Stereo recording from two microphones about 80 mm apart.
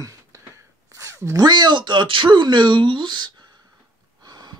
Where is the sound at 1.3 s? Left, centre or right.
Right.